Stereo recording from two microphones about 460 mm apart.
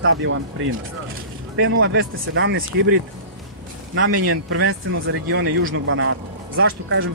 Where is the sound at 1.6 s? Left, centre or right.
Right.